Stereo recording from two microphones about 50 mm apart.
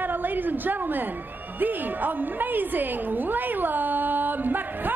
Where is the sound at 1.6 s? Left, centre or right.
Right.